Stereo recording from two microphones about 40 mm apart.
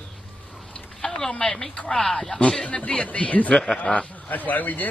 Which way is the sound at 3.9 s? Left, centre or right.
Left.